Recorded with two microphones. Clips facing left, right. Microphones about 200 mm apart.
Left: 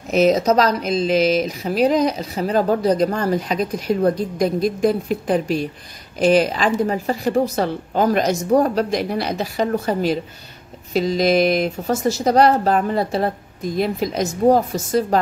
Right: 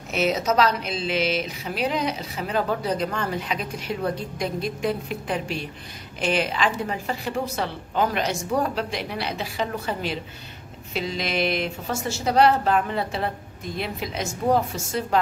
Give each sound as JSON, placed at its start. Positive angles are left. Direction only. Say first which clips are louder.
{"t": 0.1, "sound": "speech", "louder": "left 8 dB", "side_deg": 40}